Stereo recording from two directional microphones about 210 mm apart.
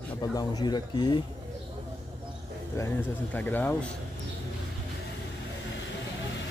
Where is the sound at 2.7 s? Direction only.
10° left (ahead or behind).